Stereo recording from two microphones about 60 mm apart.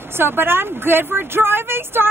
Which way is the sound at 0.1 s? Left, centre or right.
Right.